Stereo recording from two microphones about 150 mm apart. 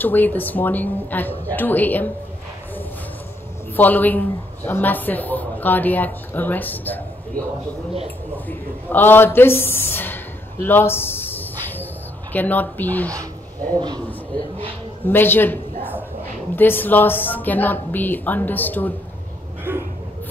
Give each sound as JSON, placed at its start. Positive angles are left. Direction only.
{"t": 0.0, "sound": "a woman's voice", "side_deg": 10}
{"t": 3.7, "sound": "a woman's voice", "side_deg": 10}
{"t": 8.5, "sound": "a sound", "side_deg": 15}
{"t": 13.7, "sound": "a man's voice", "side_deg": -30}
{"t": 15.0, "sound": "a woman's voice", "side_deg": 15}
{"t": 19.7, "sound": "a sound", "side_deg": -15}